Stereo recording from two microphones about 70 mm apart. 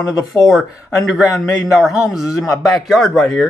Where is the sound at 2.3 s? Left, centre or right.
Left.